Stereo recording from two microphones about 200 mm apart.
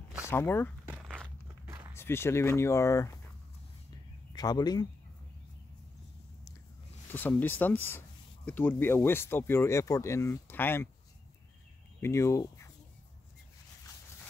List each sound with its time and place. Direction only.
0.3 s speech: 10° left (ahead or behind)
0.8 s a sound: 10° right (ahead or behind)
2.0 s speech: 10° left (ahead or behind)
4.3 s speech: 20° left (ahead or behind)
7.1 s speech: 10° left (ahead or behind)
12.0 s speech: 15° left (ahead or behind)